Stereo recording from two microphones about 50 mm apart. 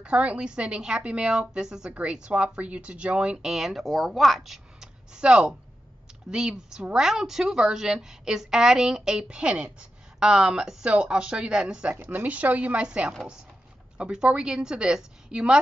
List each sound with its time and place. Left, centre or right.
0.0 s a woman's voice: right
1.9 s a woman's voice: right; by 3.8 s centre
3.8 s speech: centre
5.1 s speech: centre
12.1 s a woman's voice: right; by 15.6 s centre